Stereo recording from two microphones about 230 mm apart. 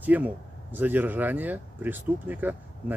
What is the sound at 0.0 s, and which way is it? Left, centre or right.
Speech, centre.